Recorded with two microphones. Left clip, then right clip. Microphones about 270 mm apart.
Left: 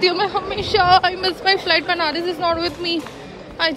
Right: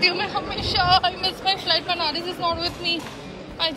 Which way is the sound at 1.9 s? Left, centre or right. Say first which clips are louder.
Left 4 dB; centre.